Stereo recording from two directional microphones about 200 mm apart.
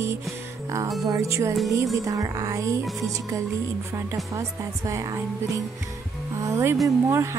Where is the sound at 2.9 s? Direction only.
Centre (ahead or behind).